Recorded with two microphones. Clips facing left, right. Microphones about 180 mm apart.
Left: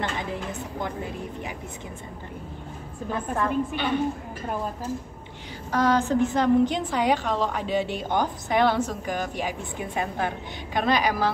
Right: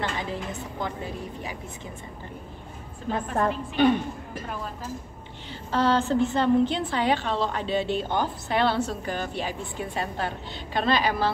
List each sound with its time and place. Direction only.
3.3 s a woman's voice: 45° right (ahead or behind)
5.7 s a woman's voice: 15° left (ahead or behind)